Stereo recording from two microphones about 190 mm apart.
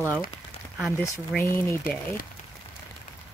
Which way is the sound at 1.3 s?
10° left (ahead or behind).